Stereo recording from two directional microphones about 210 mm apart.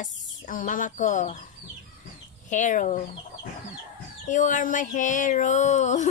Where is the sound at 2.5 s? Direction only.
35° left (ahead or behind).